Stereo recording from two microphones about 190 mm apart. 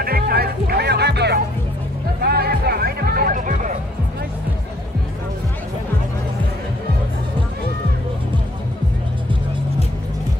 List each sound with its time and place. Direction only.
0.0 s music: 50° right (ahead or behind)